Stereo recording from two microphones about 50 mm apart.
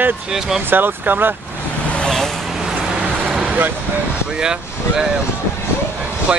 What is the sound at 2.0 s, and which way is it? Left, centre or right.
Vehicle, centre.